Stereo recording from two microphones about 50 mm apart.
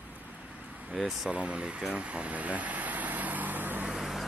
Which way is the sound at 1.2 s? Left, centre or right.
Right.